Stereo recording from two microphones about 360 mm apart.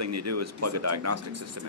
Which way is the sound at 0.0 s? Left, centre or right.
Right.